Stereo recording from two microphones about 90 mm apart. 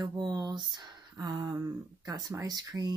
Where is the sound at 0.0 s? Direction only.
55° right (ahead or behind).